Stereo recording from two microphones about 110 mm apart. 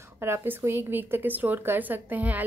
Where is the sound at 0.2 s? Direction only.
20° right (ahead or behind).